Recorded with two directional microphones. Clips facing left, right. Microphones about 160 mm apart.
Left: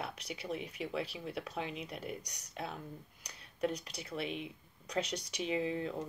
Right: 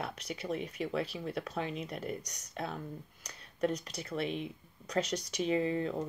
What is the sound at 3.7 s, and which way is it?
Speech, 45° right (ahead or behind).